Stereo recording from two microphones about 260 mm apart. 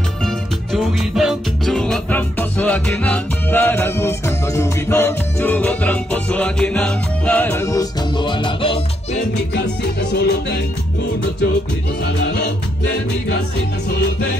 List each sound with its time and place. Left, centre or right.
0.7 s music: centre
9.5 s music: left